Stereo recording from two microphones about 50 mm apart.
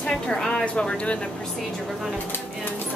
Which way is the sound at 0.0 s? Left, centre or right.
Centre.